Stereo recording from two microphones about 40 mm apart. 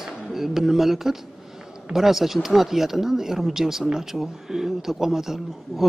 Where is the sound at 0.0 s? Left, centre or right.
Centre.